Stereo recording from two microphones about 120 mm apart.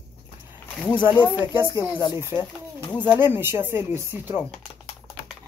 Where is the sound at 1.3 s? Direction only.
20° right (ahead or behind).